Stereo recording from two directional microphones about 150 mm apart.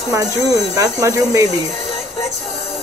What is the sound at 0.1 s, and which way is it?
Speech, 25° right (ahead or behind).